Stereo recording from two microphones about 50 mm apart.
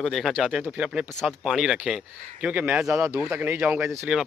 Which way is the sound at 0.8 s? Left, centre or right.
Right.